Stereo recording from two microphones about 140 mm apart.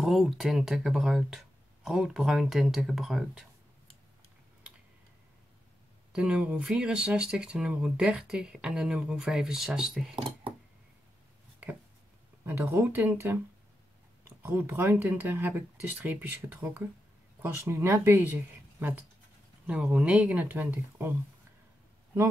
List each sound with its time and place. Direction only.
0.0 s speech: centre (ahead or behind)
6.1 s speech: 5° right (ahead or behind)
12.4 s speech: 20° right (ahead or behind)
14.4 s speech: 15° right (ahead or behind)